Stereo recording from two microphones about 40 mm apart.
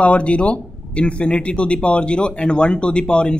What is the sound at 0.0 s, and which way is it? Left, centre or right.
Speech, left.